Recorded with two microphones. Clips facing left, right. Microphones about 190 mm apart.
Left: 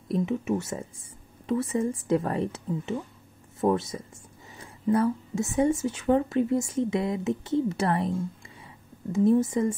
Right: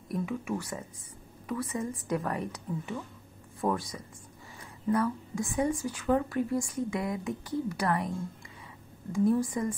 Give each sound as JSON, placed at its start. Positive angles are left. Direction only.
{"t": 0.1, "sound": "speech", "side_deg": 25}
{"t": 9.1, "sound": "speech", "side_deg": 25}